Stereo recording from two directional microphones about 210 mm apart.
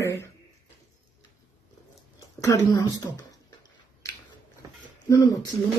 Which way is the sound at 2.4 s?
15° left (ahead or behind).